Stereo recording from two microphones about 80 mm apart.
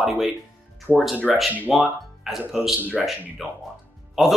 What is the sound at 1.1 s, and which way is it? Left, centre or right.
Speech, centre.